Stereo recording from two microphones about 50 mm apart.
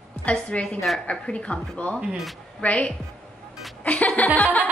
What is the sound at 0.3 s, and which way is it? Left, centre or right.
Speech, left.